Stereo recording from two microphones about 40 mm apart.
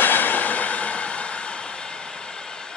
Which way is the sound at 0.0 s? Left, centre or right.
Left.